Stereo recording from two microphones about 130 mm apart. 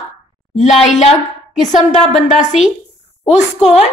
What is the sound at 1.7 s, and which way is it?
Speech, 65° left (ahead or behind).